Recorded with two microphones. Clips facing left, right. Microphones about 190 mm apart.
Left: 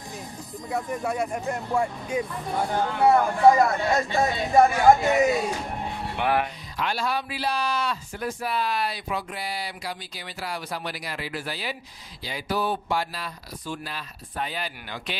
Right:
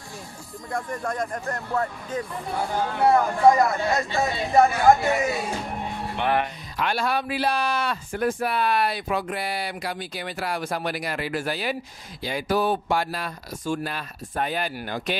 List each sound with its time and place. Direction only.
0.7 s speech: 5° left (ahead or behind)
4.1 s speech: 15° left (ahead or behind)
6.8 s speech: 60° right (ahead or behind)